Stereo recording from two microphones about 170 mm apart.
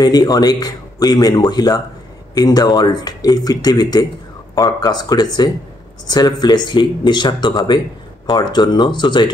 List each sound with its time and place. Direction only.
0.0 s speech: 20° left (ahead or behind)